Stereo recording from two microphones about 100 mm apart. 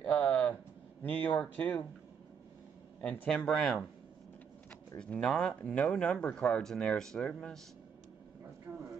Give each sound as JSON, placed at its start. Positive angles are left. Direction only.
{"t": 0.0, "sound": "a sound", "side_deg": 15}
{"t": 1.0, "sound": "speech", "side_deg": 15}
{"t": 3.0, "sound": "speech", "side_deg": 10}
{"t": 4.9, "sound": "speech", "side_deg": 10}